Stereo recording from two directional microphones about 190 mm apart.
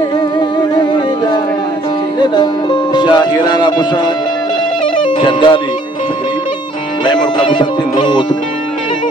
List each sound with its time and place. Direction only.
2.1 s music: 25° left (ahead or behind)
5.0 s speech: 25° left (ahead or behind)
7.1 s speech: 25° left (ahead or behind)